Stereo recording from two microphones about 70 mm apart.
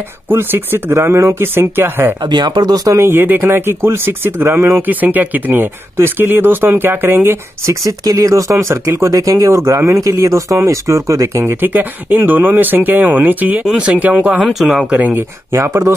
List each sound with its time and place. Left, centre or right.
0.3 s speech: right
2.2 s speech: right
3.0 s speech: right
4.8 s speech: right
7.8 s speech: right
11.6 s speech: right
14.4 s speech: centre
14.9 s speech: right
15.5 s speech: right